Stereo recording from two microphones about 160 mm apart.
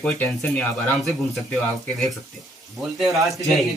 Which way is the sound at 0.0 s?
10° left (ahead or behind).